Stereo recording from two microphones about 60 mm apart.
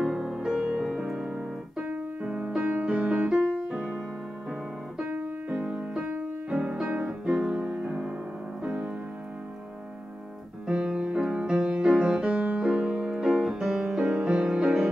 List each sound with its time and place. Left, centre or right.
0.0 s music: centre
2.2 s music: centre
2.8 s music: centre
3.7 s keyboard: centre
5.5 s music: right
10.7 s music: centre
14.6 s music: centre